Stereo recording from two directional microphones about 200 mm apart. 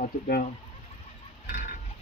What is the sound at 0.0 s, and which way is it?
Speech, 45° left (ahead or behind).